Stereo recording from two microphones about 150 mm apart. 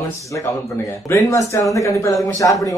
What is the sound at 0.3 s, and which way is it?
A man's voice, 15° left (ahead or behind).